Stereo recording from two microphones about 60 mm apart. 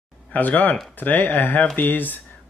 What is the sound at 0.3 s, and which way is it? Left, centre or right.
Speech, left.